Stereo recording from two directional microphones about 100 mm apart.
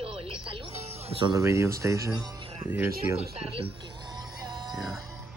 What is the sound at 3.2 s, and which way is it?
Speech, 75° right (ahead or behind).